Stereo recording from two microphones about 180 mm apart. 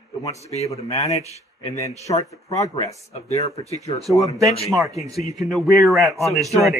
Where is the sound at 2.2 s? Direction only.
20° left (ahead or behind).